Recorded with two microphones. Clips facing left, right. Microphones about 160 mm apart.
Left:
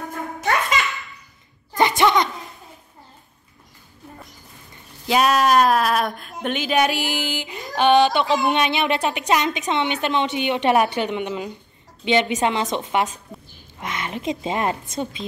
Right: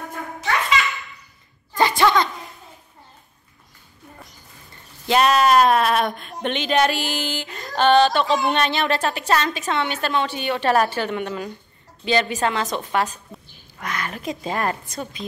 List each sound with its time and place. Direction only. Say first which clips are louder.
1.8 s sneeze: even; 20° left (ahead or behind)
5.0 s a woman's voice: right 1 dB; 5° left (ahead or behind); by 15.2 s 25° left (ahead or behind)